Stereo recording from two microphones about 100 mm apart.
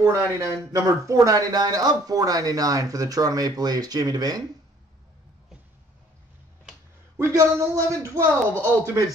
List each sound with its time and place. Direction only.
0.0 s a man's voice: 30° right (ahead or behind)
7.2 s speech: 35° right (ahead or behind)